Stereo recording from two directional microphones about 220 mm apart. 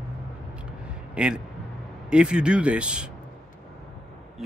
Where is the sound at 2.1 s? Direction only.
5° right (ahead or behind).